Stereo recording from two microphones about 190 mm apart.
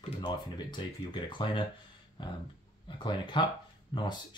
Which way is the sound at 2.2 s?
25° left (ahead or behind).